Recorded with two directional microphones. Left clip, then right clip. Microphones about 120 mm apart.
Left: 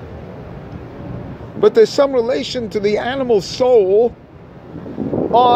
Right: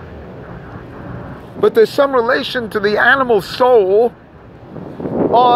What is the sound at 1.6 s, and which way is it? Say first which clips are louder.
Speech: even; 25° left (ahead or behind).